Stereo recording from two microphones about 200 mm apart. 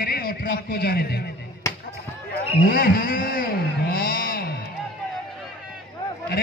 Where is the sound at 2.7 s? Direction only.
45° left (ahead or behind).